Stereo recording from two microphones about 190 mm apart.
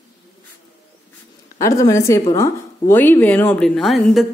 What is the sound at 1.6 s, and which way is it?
A woman's voice, 15° left (ahead or behind).